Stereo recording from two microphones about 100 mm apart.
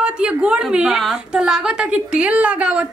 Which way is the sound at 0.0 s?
10° right (ahead or behind).